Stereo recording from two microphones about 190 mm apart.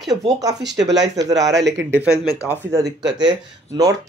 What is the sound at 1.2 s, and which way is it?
Speech, 20° right (ahead or behind).